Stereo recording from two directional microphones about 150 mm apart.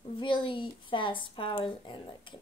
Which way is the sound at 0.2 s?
35° left (ahead or behind).